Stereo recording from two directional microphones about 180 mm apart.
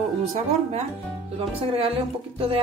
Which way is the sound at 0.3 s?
35° right (ahead or behind).